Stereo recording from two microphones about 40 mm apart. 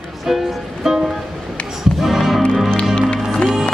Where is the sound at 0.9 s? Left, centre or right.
Centre.